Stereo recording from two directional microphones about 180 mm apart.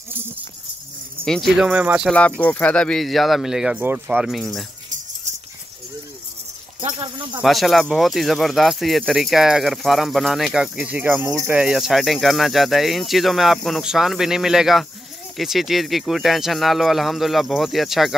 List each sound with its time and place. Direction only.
1.2 s speech: centre (ahead or behind)
2.0 s speech: 10° left (ahead or behind)
6.8 s a sound: 30° right (ahead or behind)
7.4 s speech: centre (ahead or behind)